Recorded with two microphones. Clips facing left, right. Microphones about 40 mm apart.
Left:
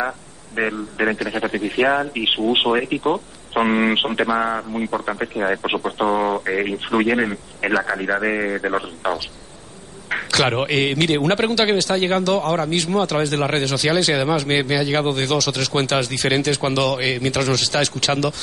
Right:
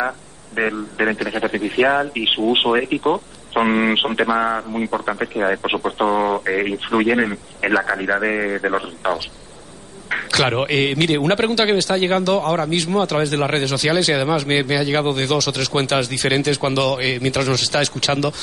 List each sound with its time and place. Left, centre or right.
0.6 s a man's voice: centre
4.7 s a man's voice: right
5.4 s speech: centre
6.2 s a man's voice: right
6.9 s a man's voice: centre
8.1 s a man's voice: centre
10.0 s a man's voice: centre